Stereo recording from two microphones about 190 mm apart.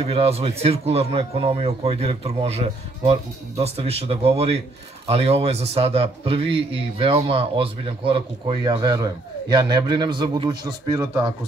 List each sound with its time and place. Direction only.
0.0 s a man's voice: 30° right (ahead or behind)